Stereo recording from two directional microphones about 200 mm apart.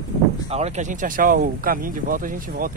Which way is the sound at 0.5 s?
40° right (ahead or behind).